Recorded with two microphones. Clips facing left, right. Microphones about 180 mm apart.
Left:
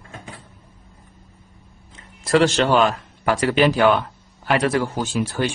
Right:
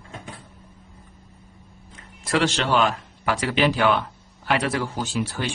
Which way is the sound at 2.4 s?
45° left (ahead or behind).